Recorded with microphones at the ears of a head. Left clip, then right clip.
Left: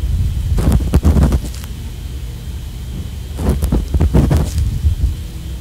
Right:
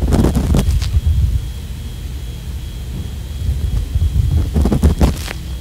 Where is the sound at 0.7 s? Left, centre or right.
Left.